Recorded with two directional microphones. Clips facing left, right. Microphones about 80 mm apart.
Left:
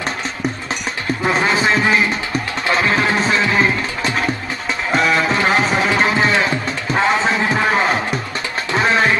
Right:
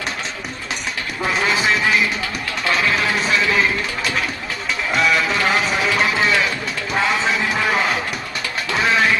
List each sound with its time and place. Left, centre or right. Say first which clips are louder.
1.3 s music: left 2 dB; left